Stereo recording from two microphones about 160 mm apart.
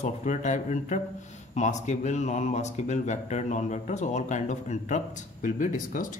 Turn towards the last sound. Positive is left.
turn(degrees=55)  # may be behind; listen again after turning